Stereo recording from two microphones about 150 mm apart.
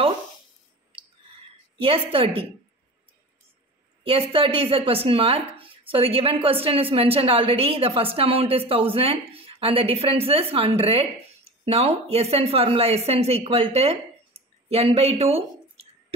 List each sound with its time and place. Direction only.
1.8 s a woman's voice: 40° right (ahead or behind)
4.0 s a woman's voice: 40° right (ahead or behind)